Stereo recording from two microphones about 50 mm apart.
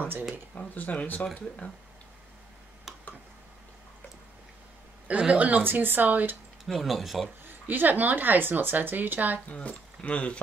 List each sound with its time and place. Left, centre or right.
0.6 s speech: left
5.0 s a man's voice: right
5.6 s a woman's voice: right
6.6 s speech: centre
7.4 s a woman's voice: right
9.5 s speech: left